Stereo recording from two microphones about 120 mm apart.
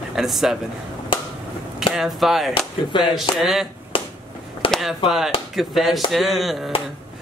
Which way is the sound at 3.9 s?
50° left (ahead or behind).